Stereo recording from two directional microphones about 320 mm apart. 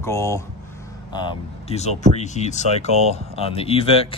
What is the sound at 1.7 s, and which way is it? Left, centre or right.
Speech, left.